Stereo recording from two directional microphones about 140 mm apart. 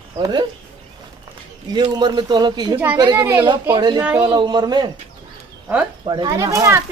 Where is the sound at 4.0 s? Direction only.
10° right (ahead or behind).